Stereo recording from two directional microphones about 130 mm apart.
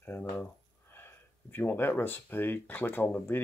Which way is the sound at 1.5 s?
15° left (ahead or behind).